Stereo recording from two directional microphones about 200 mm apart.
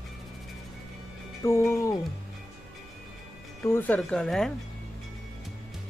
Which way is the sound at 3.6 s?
10° left (ahead or behind).